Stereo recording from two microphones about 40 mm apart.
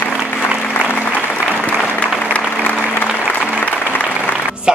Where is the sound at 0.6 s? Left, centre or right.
Left.